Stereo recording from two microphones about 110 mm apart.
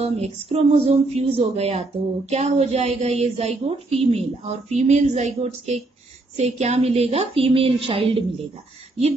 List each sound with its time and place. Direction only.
0.0 s a woman's voice: 65° right (ahead or behind)